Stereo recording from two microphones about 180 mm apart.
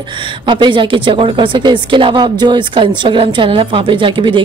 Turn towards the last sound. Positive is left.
turn(degrees=-30)  # may be behind; listen again after turning